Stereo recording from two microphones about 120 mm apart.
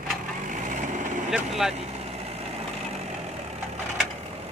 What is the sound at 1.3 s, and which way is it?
Speech, 5° right (ahead or behind).